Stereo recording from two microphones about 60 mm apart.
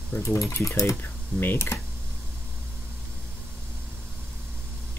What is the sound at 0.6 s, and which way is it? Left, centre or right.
Speech, left.